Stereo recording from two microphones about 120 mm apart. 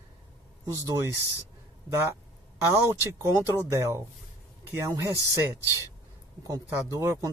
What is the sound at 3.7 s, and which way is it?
Speech, 25° right (ahead or behind).